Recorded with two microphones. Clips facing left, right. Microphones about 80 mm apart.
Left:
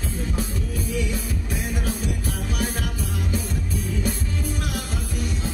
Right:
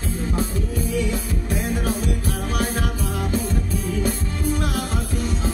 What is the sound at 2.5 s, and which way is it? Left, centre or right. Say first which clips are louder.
Music: right 4 dB; right.